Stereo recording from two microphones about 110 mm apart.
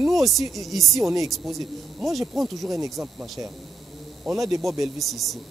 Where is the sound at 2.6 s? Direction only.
30° right (ahead or behind).